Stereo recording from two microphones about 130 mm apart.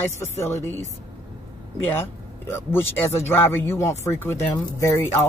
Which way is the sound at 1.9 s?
20° left (ahead or behind).